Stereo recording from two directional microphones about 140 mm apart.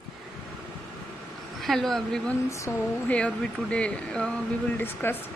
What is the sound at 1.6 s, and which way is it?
Speech, centre (ahead or behind).